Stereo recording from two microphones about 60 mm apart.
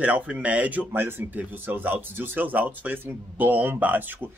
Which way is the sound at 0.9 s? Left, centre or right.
Right.